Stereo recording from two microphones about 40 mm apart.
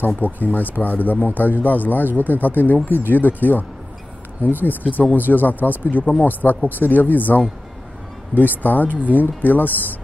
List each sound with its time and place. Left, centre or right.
0.2 s speech: left